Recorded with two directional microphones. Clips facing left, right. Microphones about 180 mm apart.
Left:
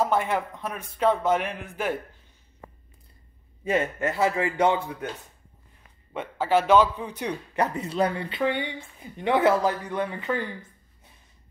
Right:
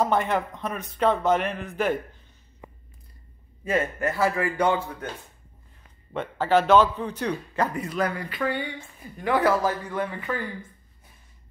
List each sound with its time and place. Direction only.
0.0 s speech: 5° left (ahead or behind)
3.6 s a man's voice: 20° left (ahead or behind)
6.1 s a man's voice: 10° left (ahead or behind)